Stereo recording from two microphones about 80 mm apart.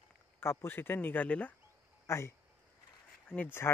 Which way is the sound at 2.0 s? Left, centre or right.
Left.